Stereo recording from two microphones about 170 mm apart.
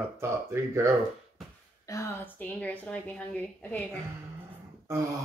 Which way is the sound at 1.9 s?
15° left (ahead or behind).